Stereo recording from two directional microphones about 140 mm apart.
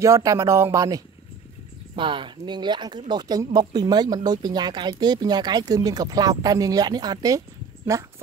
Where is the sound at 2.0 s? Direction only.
35° right (ahead or behind).